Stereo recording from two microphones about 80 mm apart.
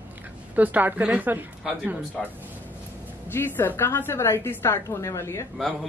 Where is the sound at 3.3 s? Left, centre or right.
Left.